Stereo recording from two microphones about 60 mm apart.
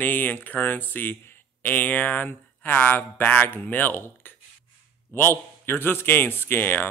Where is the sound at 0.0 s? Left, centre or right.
Left.